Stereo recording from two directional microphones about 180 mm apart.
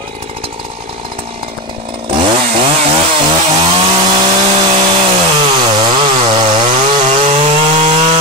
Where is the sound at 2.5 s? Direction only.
35° right (ahead or behind).